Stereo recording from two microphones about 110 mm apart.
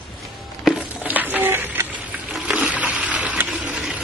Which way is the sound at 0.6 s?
10° right (ahead or behind).